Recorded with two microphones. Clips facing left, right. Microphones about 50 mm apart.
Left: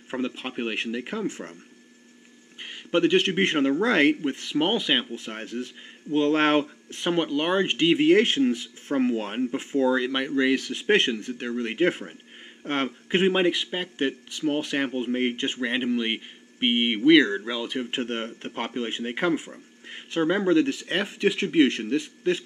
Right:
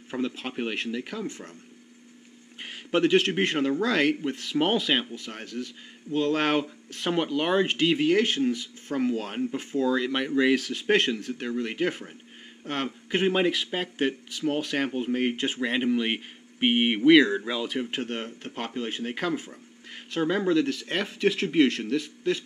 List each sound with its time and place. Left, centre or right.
0.4 s speech: centre
1.1 s speech: left
2.6 s speech: centre; by 4.3 s left
4.3 s speech: centre
5.1 s speech: left
7.0 s speech: centre
8.0 s speech: left
9.4 s speech: centre
11.7 s speech: left
15.3 s speech: centre
18.0 s speech: left
18.7 s speech: centre